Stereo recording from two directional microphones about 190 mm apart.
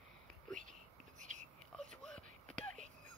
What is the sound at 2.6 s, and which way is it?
Whispering, 40° right (ahead or behind).